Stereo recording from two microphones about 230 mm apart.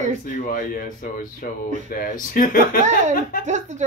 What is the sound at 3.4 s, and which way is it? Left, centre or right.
Speech, right.